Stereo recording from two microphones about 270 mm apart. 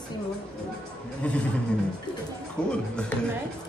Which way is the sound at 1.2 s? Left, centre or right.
Centre.